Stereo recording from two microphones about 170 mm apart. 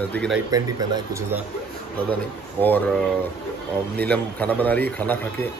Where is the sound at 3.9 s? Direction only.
10° left (ahead or behind).